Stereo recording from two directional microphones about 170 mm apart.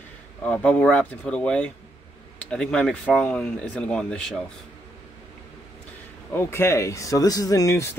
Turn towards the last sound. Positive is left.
turn(degrees=20)  # may be behind; listen again after turning